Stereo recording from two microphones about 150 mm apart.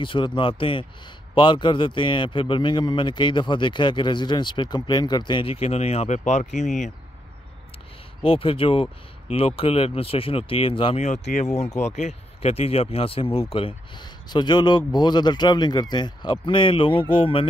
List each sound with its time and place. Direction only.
0.0 s a man's voice: 35° left (ahead or behind); by 6.9 s 50° left (ahead or behind)
8.2 s a man's voice: 35° left (ahead or behind)
11.1 s a man's voice: 50° left (ahead or behind)